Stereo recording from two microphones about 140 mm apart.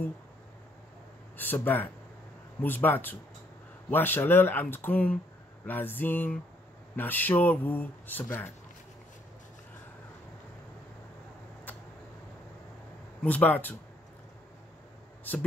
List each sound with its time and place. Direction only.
1.3 s speech: 15° left (ahead or behind)
13.2 s speech: 10° left (ahead or behind)